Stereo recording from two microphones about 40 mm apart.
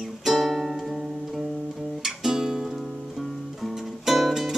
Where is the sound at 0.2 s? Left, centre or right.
Centre.